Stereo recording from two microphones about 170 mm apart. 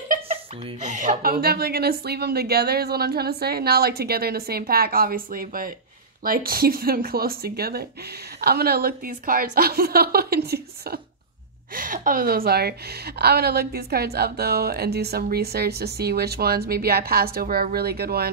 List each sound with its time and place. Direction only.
0.3 s speech: 40° right (ahead or behind); by 11.0 s 65° right (ahead or behind)
11.7 s a woman's voice: 55° right (ahead or behind); by 18.3 s 70° right (ahead or behind)